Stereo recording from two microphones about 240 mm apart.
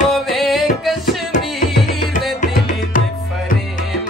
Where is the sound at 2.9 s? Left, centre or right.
Left.